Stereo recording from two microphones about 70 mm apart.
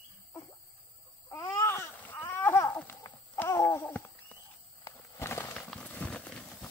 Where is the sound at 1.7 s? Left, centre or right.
Left.